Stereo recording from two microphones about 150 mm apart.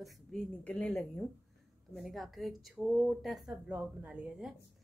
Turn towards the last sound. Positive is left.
turn(degrees=-10)  # may be behind; listen again after turning